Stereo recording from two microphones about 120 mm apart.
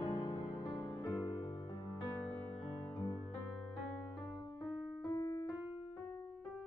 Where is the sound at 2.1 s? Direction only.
15° left (ahead or behind).